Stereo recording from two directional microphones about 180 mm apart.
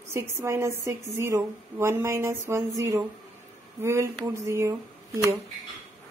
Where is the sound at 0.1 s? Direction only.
15° right (ahead or behind).